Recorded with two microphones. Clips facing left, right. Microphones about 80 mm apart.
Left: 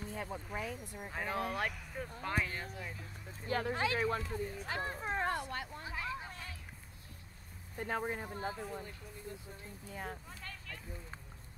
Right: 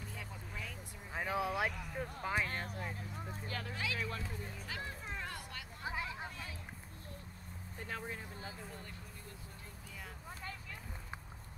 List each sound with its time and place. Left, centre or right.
0.0 s speech: left
1.1 s speech: centre
2.5 s speech: right
3.4 s speech: left
3.8 s speech: left
5.9 s hubbub: right
7.8 s speech: left
8.5 s speech: centre
9.8 s speech: left
10.4 s a sound: centre